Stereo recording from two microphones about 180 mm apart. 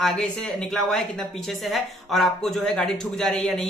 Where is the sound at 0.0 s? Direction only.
5° left (ahead or behind).